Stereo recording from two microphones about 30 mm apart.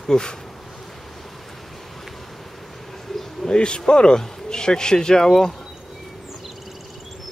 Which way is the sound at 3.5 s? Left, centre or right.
Left.